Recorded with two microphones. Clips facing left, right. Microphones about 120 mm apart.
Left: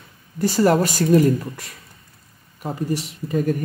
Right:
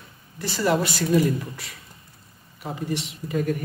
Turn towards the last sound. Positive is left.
turn(degrees=40)  # may be behind; listen again after turning